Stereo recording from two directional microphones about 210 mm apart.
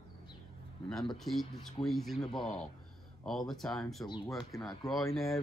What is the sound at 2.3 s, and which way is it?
Speech, 30° left (ahead or behind).